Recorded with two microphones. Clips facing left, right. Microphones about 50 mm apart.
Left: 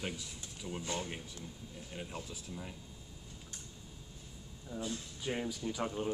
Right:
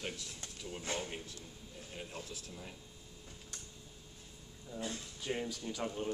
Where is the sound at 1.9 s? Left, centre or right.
Centre.